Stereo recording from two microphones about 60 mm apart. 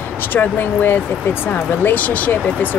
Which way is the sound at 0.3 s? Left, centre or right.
Left.